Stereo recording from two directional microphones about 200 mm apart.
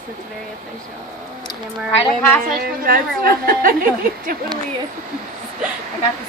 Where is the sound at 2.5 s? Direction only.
45° right (ahead or behind).